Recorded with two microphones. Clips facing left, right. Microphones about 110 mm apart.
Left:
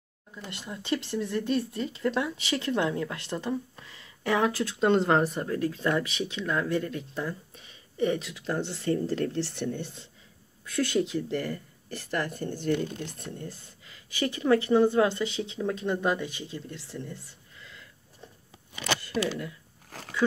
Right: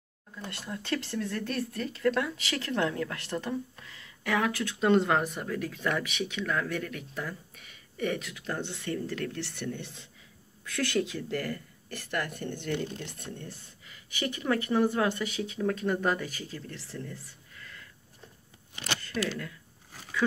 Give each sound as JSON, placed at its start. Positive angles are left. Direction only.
{"t": 0.5, "sound": "speech", "side_deg": 20}